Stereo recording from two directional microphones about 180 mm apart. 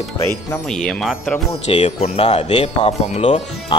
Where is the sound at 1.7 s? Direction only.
30° left (ahead or behind).